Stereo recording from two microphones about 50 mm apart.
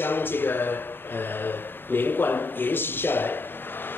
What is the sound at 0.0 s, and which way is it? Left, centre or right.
Speech, left.